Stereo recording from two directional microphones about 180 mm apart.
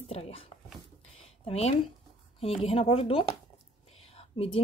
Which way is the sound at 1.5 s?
35° left (ahead or behind).